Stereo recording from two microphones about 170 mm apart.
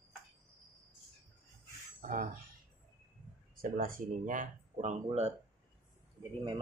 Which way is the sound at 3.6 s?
55° right (ahead or behind).